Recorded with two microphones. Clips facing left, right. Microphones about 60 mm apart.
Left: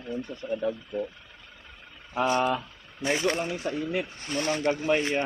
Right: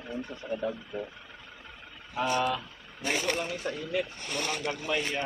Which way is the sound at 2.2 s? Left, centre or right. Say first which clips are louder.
Left 3 dB; left.